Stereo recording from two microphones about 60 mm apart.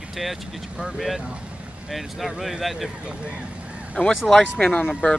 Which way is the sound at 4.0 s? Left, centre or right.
Centre.